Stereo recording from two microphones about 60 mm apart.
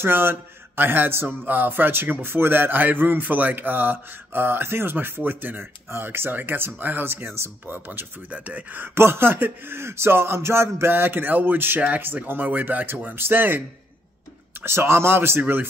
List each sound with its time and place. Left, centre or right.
0.0 s speech: right
8.3 s speech: right
8.9 s speech: right
14.6 s speech: right